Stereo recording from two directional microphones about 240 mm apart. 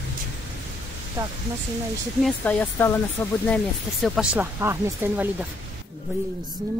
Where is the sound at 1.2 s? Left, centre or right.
Centre.